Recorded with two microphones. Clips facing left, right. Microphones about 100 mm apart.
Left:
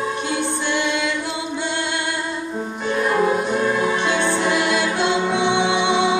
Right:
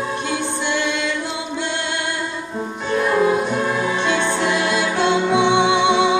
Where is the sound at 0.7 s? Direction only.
15° left (ahead or behind).